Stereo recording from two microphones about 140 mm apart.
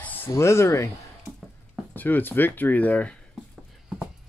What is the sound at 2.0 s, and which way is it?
Speech, 15° left (ahead or behind).